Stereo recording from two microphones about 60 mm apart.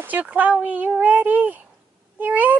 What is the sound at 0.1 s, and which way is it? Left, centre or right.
Speech, right.